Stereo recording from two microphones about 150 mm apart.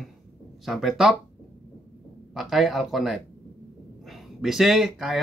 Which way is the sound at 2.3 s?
Centre (ahead or behind).